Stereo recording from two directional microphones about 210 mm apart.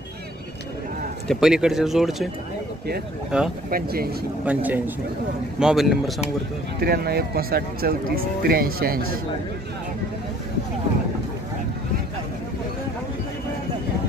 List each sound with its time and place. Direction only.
1.2 s speech: centre (ahead or behind)
3.3 s speech: 5° right (ahead or behind)
3.7 s speech: 45° right (ahead or behind)
4.5 s a man's voice: 10° right (ahead or behind)
6.8 s speech: 50° right (ahead or behind)